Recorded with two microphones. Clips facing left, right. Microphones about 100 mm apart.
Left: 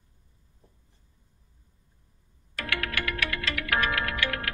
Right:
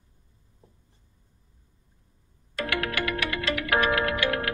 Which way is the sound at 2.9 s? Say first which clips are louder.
Right 3 dB; 10° right (ahead or behind).